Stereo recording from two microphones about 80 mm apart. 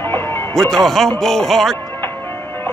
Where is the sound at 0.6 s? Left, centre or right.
Centre.